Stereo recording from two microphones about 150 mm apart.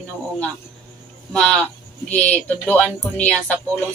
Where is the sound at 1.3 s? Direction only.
5° left (ahead or behind).